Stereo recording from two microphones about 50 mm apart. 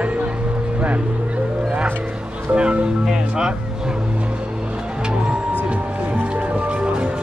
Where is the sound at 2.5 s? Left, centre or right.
Right.